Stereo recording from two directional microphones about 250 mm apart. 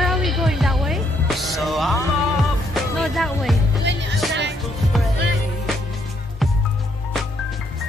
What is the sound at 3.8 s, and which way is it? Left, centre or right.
Music, right.